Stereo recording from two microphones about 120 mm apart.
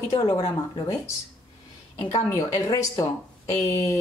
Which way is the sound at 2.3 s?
25° left (ahead or behind).